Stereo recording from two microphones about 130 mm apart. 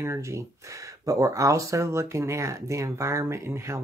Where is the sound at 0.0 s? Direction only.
20° right (ahead or behind).